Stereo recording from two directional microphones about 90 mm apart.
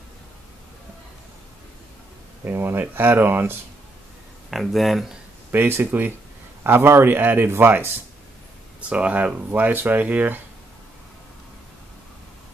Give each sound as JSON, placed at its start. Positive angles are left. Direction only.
{"t": 2.4, "sound": "a man's voice", "side_deg": -25}
{"t": 4.5, "sound": "speech", "side_deg": 0}
{"t": 5.5, "sound": "a man's voice", "side_deg": -25}
{"t": 8.8, "sound": "speech", "side_deg": -15}